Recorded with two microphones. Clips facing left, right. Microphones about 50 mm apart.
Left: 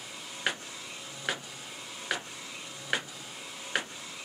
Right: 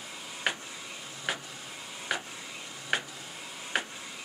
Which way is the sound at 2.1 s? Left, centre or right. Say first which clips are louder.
Right 1 dB; centre.